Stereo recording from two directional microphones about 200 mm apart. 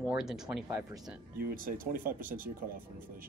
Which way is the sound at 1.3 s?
45° right (ahead or behind).